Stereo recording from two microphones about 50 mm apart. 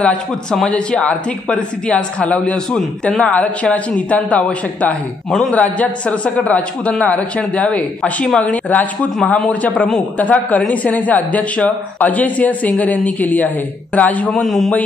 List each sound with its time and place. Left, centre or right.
0.7 s speech: left
5.5 s speech: left
14.3 s a man's voice: centre